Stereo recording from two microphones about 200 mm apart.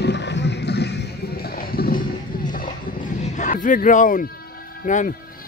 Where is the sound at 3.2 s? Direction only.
40° left (ahead or behind).